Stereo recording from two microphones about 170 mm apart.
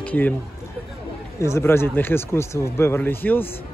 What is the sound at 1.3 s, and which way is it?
Speech, 15° left (ahead or behind).